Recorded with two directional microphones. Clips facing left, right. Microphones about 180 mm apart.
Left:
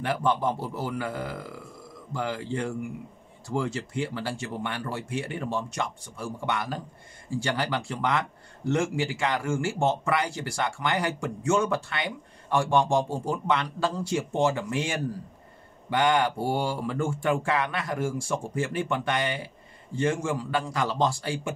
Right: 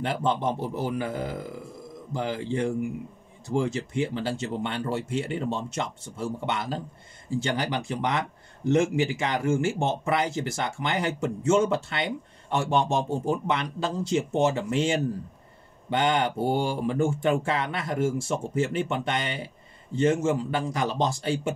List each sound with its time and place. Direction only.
0.0 s speech: 25° right (ahead or behind)